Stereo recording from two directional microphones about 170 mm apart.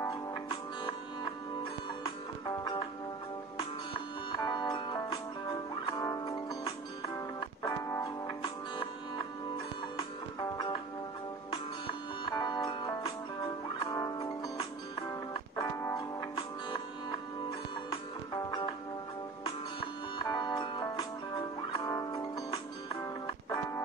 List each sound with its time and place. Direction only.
2.6 s music: 25° left (ahead or behind)
4.3 s music: 25° left (ahead or behind)
12.3 s music: 25° left (ahead or behind)
15.3 s music: 20° left (ahead or behind)
17.8 s music: 25° left (ahead or behind)
20.2 s music: 25° left (ahead or behind)